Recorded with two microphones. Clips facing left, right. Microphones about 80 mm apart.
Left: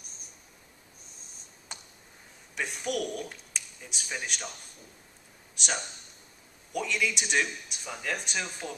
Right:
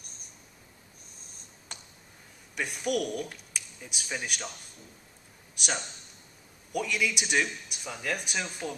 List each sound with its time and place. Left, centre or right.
2.5 s speech: centre
5.6 s a man's voice: centre